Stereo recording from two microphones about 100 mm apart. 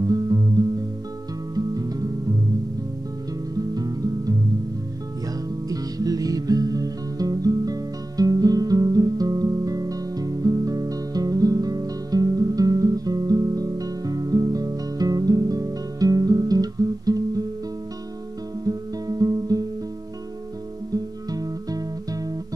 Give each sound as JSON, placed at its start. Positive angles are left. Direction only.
{"t": 0.0, "sound": "music", "side_deg": -35}
{"t": 3.5, "sound": "music", "side_deg": -40}
{"t": 5.7, "sound": "music", "side_deg": -40}
{"t": 18.7, "sound": "music", "side_deg": -35}
{"t": 20.9, "sound": "music", "side_deg": -40}